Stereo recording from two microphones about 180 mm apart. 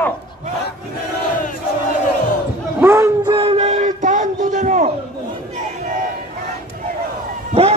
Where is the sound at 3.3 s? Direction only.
30° right (ahead or behind).